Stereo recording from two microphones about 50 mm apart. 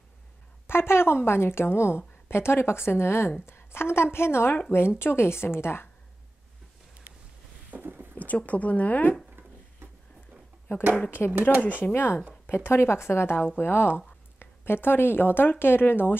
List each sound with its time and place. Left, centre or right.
0.7 s a woman's voice: left
7.7 s a sound: right
8.1 s speech: left
11.0 s speech: left
11.9 s a woman's voice: left